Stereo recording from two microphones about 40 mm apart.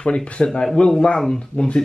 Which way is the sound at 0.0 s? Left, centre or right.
Left.